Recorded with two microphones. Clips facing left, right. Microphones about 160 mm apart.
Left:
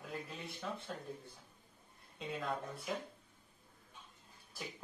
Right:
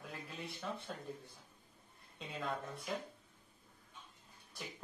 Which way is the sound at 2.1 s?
Centre (ahead or behind).